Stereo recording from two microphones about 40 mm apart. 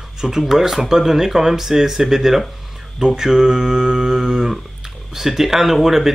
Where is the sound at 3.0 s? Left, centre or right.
Centre.